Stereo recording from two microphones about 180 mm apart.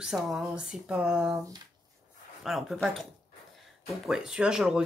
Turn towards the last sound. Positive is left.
turn(degrees=-5)  # may be behind; listen again after turning